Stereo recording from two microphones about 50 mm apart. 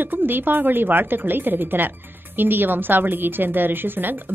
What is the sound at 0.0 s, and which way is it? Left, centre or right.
A woman's voice, right.